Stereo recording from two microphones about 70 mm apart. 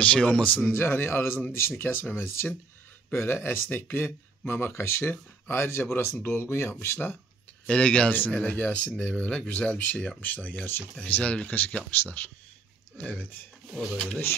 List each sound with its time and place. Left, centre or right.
0.0 s speech: centre
0.7 s speech: left
7.6 s speech: centre